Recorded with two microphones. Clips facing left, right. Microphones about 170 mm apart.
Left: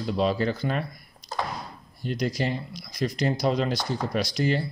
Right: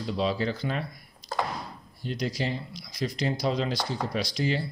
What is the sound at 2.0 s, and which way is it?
Speech, 50° left (ahead or behind).